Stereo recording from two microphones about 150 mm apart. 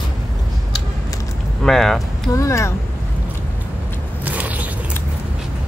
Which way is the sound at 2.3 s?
20° left (ahead or behind).